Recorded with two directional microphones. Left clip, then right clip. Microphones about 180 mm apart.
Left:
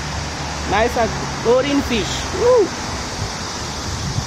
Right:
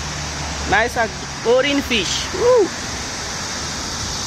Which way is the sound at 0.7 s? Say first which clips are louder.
Even; 20° right (ahead or behind).